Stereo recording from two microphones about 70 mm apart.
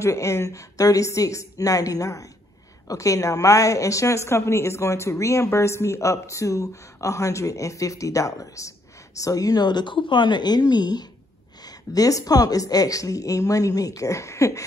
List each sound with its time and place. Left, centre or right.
0.0 s speech: left
9.2 s speech: left
11.6 s a woman's voice: left